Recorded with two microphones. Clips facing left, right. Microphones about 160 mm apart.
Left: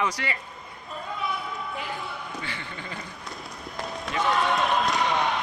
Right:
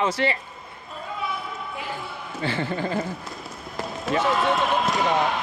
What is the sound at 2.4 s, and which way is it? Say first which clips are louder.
Speech: right 11 dB; 35° right (ahead or behind).